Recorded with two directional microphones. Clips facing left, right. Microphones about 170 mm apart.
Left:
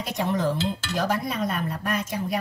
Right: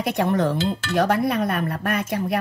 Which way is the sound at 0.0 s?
60° right (ahead or behind).